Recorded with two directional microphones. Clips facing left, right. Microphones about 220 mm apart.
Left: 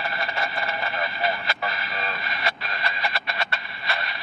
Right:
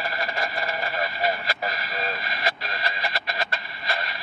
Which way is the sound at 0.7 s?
35° right (ahead or behind).